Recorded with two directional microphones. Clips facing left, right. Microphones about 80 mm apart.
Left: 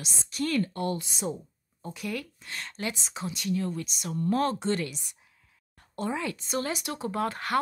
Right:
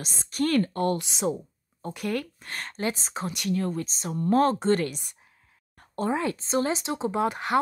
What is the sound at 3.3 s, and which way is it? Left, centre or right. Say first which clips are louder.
Speech: right 2 dB; right.